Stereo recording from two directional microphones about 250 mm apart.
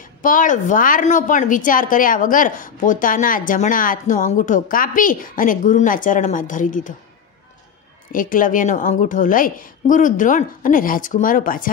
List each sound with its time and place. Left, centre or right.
0.2 s a woman's voice: left
8.1 s a woman's voice: left